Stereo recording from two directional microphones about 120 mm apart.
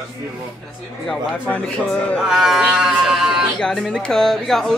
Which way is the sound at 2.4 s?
5° right (ahead or behind).